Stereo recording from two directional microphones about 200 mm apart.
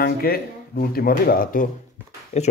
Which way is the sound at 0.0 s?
50° left (ahead or behind).